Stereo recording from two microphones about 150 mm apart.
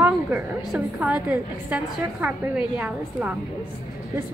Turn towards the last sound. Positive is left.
turn(degrees=-10)  # may be behind; listen again after turning